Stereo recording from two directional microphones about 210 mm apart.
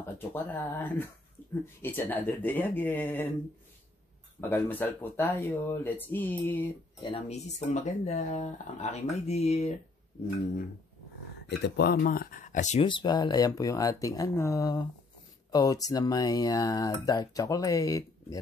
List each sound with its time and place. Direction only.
0.3 s speech: 10° left (ahead or behind)
4.4 s speech: 10° left (ahead or behind)
7.0 s speech: 25° left (ahead or behind)
11.4 s speech: 55° left (ahead or behind); by 12.8 s 35° left (ahead or behind)
12.8 s speech: 20° left (ahead or behind)